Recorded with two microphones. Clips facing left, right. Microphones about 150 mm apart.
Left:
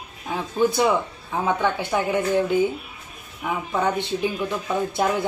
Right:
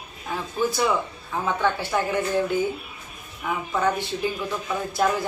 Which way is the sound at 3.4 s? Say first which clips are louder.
Left 1 dB; 15° left (ahead or behind).